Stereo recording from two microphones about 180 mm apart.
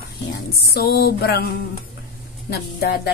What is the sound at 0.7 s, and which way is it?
Speech, 60° left (ahead or behind).